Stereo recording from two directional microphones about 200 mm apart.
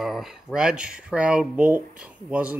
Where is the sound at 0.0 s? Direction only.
Centre (ahead or behind).